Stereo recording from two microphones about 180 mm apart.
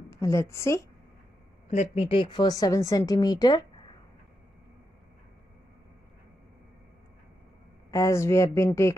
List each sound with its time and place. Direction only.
0.1 s a woman's voice: 15° left (ahead or behind)
1.7 s a woman's voice: 35° left (ahead or behind)
7.9 s speech: 15° left (ahead or behind)